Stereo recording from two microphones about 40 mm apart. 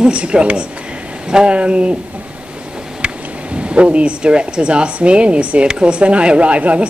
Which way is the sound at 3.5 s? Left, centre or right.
Right.